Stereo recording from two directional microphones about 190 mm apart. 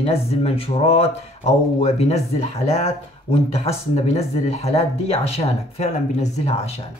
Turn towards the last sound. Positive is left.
turn(degrees=35)  # may be behind; listen again after turning